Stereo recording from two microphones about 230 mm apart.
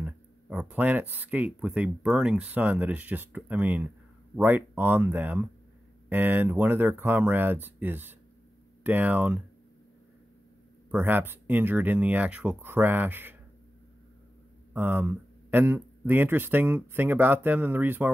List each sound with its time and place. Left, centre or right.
0.0 s speech: centre
10.9 s speech: centre
14.7 s speech: centre